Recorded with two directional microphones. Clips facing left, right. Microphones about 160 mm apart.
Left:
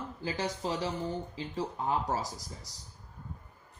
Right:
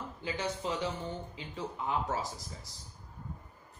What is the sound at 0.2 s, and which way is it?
Speech, 35° left (ahead or behind).